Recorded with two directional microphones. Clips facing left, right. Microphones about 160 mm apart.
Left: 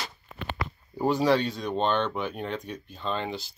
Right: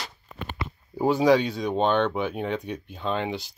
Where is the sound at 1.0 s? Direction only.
10° right (ahead or behind).